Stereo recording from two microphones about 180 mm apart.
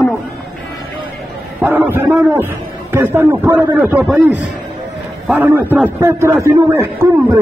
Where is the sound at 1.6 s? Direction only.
10° right (ahead or behind).